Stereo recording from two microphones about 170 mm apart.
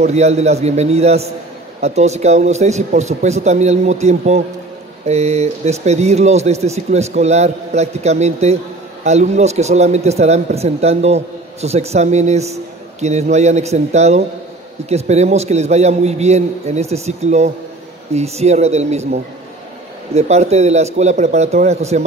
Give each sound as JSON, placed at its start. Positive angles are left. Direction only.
{"t": 0.0, "sound": "speech", "side_deg": -40}
{"t": 20.2, "sound": "speech", "side_deg": -40}